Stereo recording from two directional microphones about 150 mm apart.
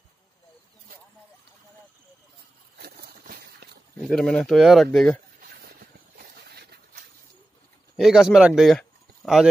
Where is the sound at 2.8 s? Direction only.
90° right.